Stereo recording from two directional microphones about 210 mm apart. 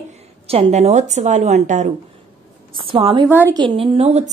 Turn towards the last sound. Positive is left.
turn(degrees=-30)  # may be behind; listen again after turning